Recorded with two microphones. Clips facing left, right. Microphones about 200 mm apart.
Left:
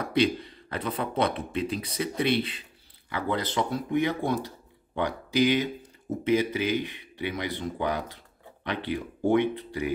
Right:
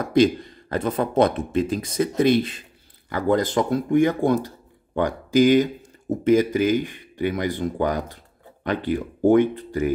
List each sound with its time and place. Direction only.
0.0 s speech: 45° right (ahead or behind)